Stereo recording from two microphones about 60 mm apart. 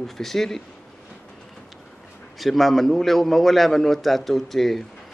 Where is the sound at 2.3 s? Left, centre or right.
Centre.